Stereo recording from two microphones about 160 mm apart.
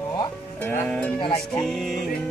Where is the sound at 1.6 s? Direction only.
Centre (ahead or behind).